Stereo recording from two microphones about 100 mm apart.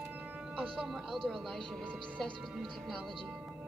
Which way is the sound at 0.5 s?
5° right (ahead or behind).